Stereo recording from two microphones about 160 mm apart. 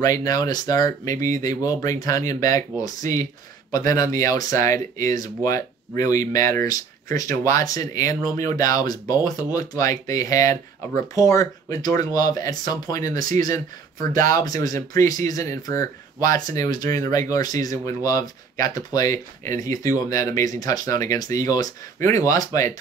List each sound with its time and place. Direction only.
0.0 s speech: 20° left (ahead or behind)
4.2 s speech: 20° left (ahead or behind)
14.4 s speech: 25° left (ahead or behind)